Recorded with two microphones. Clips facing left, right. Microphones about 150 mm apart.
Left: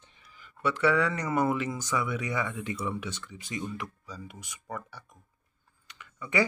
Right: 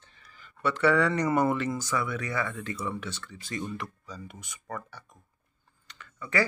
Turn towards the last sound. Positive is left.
turn(degrees=15)  # may be behind; listen again after turning